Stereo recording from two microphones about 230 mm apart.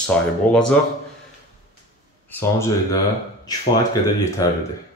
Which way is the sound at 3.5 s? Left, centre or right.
Centre.